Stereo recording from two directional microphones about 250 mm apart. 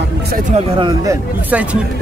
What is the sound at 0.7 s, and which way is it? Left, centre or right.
Speech, centre.